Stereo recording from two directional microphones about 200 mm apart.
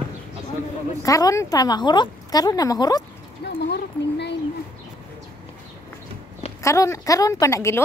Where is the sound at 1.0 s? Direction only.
15° left (ahead or behind).